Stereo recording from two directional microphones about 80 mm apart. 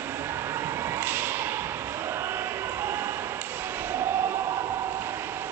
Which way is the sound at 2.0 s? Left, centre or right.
Right.